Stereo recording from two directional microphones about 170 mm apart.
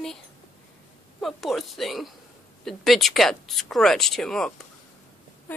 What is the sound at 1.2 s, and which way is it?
Speech, centre (ahead or behind).